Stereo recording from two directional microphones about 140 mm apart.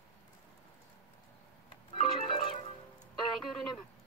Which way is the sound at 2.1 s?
40° left (ahead or behind).